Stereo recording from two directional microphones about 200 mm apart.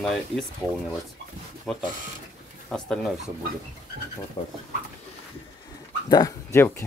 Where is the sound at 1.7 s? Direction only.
5° left (ahead or behind).